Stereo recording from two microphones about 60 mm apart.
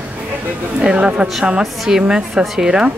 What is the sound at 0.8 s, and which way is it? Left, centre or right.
A woman's voice, centre.